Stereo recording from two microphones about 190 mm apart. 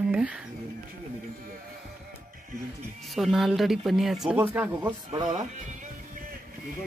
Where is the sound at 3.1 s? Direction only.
Centre (ahead or behind).